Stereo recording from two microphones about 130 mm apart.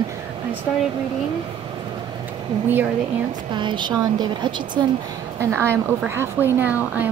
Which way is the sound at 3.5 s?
35° right (ahead or behind).